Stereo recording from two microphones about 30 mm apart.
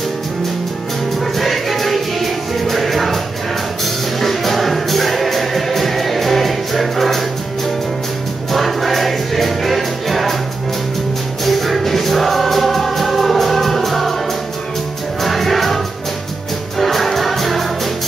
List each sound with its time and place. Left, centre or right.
1.2 s music: centre
4.2 s music: centre
8.5 s music: centre
11.4 s music: centre
15.2 s music: centre